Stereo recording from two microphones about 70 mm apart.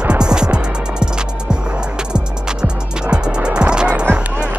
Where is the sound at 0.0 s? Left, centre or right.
Centre.